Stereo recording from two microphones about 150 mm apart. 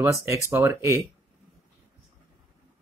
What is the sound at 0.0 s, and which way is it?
Speech, 15° right (ahead or behind).